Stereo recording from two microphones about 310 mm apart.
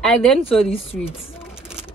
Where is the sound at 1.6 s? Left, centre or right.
Centre.